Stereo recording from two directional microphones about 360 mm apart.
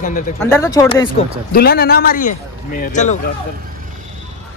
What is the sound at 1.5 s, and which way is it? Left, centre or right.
A man's voice, left.